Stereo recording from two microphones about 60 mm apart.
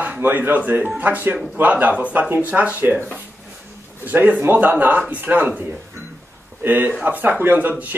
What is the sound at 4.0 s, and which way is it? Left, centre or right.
A man's voice, right.